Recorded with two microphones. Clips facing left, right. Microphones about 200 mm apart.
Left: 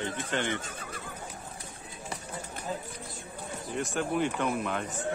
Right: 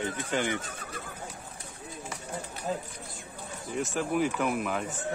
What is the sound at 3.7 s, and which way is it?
Speech, centre (ahead or behind).